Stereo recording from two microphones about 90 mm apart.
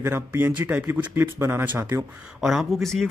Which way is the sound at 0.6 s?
15° right (ahead or behind).